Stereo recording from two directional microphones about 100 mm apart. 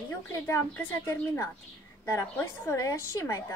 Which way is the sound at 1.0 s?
25° left (ahead or behind).